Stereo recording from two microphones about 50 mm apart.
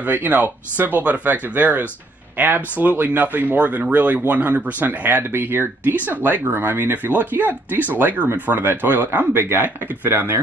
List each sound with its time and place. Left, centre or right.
0.0 s speech: right
2.7 s speech: right
5.9 s speech: right
9.3 s speech: right